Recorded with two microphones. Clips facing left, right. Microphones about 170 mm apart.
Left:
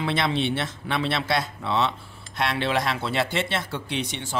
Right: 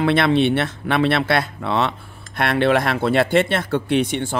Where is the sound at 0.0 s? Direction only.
60° right (ahead or behind).